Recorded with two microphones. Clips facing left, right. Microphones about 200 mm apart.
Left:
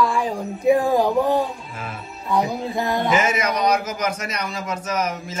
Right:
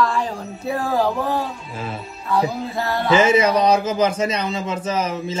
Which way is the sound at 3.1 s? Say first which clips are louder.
Right 6 dB; 30° right (ahead or behind).